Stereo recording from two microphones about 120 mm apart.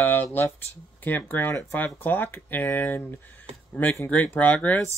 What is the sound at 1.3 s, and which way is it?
Speech, 20° left (ahead or behind).